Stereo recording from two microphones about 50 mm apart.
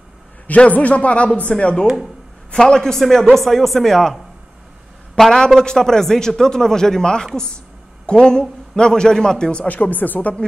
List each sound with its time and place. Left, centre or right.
0.7 s a man's voice: left
9.7 s speech: left